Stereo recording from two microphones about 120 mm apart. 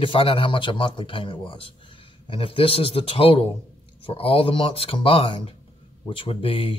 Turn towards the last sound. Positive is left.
turn(degrees=50)  # may be behind; listen again after turning